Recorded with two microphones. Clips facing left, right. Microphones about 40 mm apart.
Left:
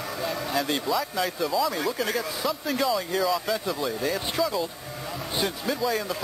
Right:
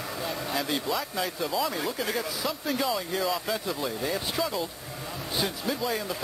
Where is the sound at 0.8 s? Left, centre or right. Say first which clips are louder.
Left 3 dB; centre.